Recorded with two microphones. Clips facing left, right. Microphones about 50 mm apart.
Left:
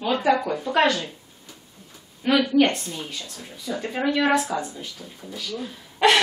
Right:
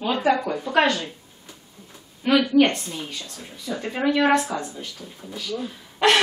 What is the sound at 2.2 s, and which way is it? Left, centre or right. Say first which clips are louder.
A woman's voice: right 1 dB; centre.